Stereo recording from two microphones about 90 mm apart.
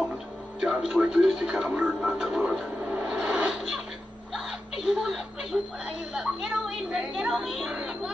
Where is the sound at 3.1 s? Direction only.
10° right (ahead or behind).